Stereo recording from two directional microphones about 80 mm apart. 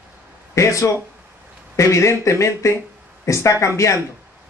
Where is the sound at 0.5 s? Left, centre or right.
Left.